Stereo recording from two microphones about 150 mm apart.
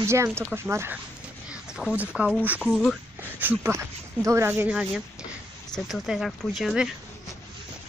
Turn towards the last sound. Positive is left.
turn(degrees=0)  # may be behind; listen again after turning